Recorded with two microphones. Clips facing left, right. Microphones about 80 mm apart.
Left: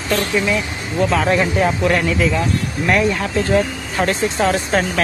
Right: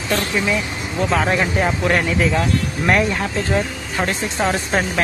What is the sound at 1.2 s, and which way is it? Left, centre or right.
Speech, centre.